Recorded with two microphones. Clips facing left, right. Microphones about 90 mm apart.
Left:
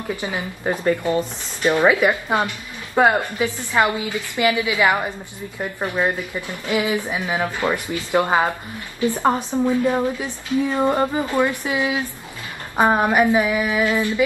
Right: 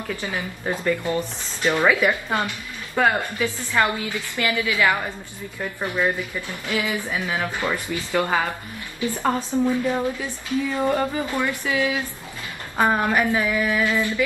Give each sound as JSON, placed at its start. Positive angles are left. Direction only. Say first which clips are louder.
{"t": 0.1, "sound": "speech", "louder": "left 3 dB", "side_deg": 20}